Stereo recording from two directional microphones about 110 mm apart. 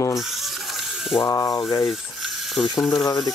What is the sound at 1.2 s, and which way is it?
Speech, 30° left (ahead or behind).